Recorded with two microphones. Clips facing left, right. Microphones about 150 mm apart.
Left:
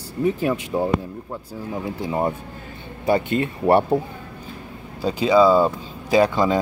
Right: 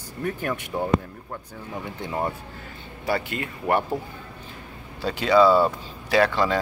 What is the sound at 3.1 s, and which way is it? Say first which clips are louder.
Speech: left 7 dB; 20° left (ahead or behind).